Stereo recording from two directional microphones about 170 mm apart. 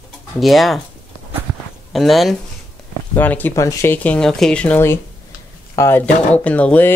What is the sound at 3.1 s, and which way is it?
Speech, 10° left (ahead or behind).